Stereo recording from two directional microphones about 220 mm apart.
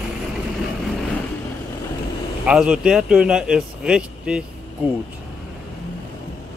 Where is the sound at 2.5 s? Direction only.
5° right (ahead or behind).